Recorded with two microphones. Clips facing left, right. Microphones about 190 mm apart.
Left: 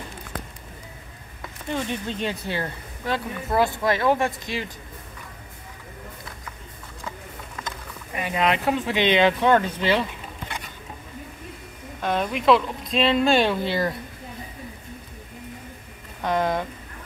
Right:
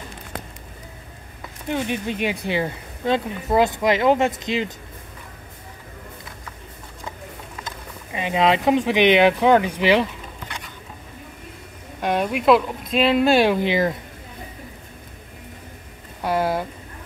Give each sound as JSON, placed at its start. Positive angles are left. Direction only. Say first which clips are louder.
{"t": 1.7, "sound": "speech", "louder": "right 3 dB", "side_deg": -15}
{"t": 8.1, "sound": "speech", "louder": "right 4 dB", "side_deg": -20}
{"t": 12.0, "sound": "speech", "louder": "right 3 dB", "side_deg": -10}
{"t": 16.2, "sound": "a sound", "louder": "right 2 dB", "side_deg": -10}